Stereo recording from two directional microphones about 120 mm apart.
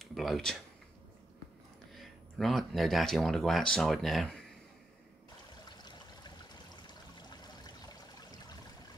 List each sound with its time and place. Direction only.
0.0 s a sound: centre (ahead or behind)
2.0 s speech: centre (ahead or behind)
5.7 s stream: 35° left (ahead or behind)